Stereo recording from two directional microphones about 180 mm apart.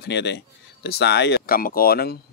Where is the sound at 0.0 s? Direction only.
70° left (ahead or behind).